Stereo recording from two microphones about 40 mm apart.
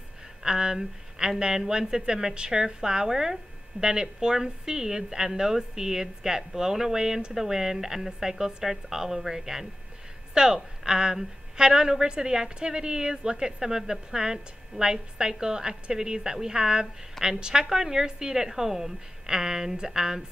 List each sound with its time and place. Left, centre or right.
0.4 s a woman's voice: centre